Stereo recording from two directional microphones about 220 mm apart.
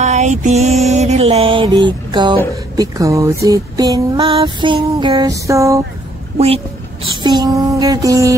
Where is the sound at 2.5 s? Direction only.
15° right (ahead or behind).